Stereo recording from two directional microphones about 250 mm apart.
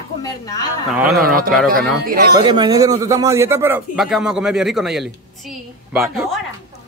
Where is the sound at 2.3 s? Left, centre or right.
Centre.